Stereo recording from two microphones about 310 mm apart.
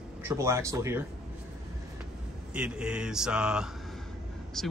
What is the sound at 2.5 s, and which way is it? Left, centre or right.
Speech, centre.